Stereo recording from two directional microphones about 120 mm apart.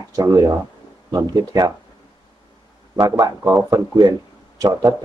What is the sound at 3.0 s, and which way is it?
Speech, 30° right (ahead or behind).